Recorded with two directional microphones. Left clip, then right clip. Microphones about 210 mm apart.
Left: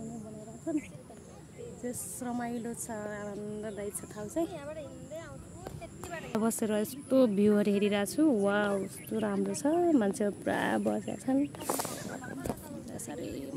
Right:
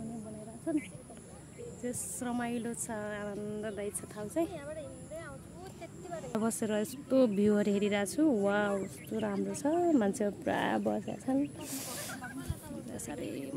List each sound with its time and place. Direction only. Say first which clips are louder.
0.7 s a woman's voice: even; centre (ahead or behind)
4.6 s speech: left 1 dB; 30° left (ahead or behind)
6.3 s speech: left 2 dB; 10° left (ahead or behind)
9.8 s a woman's voice: left 1 dB; centre (ahead or behind)
12.9 s a sound: even; centre (ahead or behind)